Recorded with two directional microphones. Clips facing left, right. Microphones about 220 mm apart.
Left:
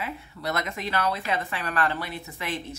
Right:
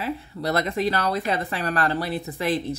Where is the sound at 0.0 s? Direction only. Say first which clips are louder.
Right 5 dB; 35° right (ahead or behind).